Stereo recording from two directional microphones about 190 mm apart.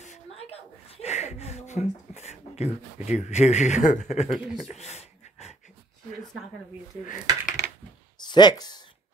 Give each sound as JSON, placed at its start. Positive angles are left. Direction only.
{"t": 0.0, "sound": "a sound", "side_deg": 35}
{"t": 4.3, "sound": "speech", "side_deg": 0}
{"t": 4.7, "sound": "dog", "side_deg": 35}
{"t": 7.1, "sound": "speech", "side_deg": 45}
{"t": 8.2, "sound": "speech", "side_deg": 20}